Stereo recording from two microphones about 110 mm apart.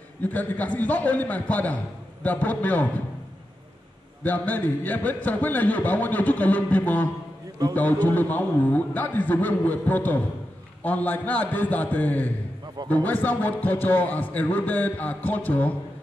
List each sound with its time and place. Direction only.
0.2 s a man's voice: 15° left (ahead or behind)
4.2 s a man's voice: 15° left (ahead or behind)